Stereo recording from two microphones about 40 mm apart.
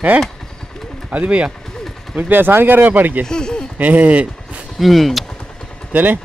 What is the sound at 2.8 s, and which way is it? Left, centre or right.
Speech, right.